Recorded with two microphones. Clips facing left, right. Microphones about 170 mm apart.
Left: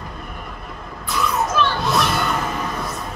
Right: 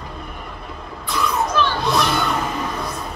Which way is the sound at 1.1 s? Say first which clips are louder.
Even; centre (ahead or behind).